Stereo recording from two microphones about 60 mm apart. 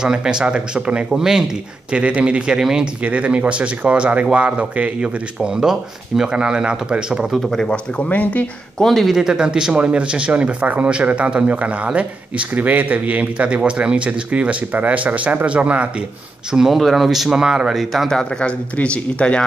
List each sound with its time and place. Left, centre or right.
0.0 s speech: centre
1.9 s speech: centre
3.0 s speech: right
7.2 s speech: centre
7.6 s speech: centre
8.7 s speech: centre
9.1 s speech: centre
16.5 s speech: centre
18.1 s speech: centre